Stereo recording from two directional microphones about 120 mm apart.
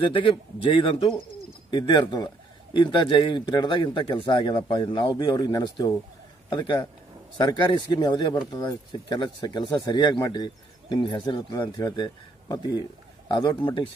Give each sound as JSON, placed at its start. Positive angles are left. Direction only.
{"t": 0.0, "sound": "speech", "side_deg": 45}